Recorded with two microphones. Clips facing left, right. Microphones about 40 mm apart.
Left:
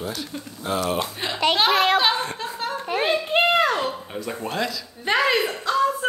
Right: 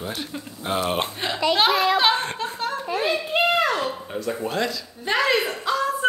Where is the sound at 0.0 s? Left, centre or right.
Right.